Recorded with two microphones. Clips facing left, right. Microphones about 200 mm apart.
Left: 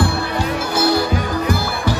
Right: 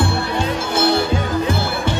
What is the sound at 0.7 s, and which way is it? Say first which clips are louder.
Music: even; 25° right (ahead or behind).